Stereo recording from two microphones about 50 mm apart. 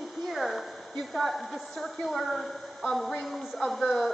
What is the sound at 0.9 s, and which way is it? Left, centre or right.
A woman's voice, centre.